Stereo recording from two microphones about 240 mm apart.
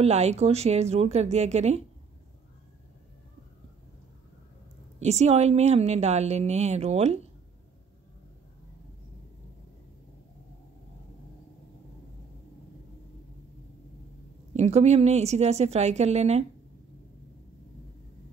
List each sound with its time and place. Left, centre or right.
0.0 s a woman's voice: right
5.0 s a woman's voice: right
14.5 s a woman's voice: right